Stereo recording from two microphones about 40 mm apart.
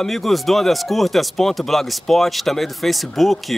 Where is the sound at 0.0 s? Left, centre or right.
Centre.